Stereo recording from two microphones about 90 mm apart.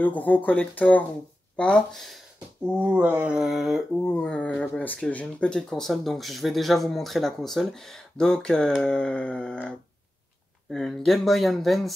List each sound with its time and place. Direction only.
0.0 s speech: 20° left (ahead or behind)
2.6 s a sound: 15° right (ahead or behind)
4.0 s speech: 10° left (ahead or behind)